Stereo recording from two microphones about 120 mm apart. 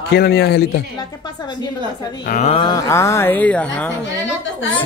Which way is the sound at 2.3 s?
90° left.